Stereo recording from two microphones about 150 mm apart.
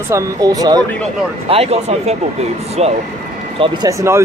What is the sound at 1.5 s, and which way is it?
Speech, 45° right (ahead or behind).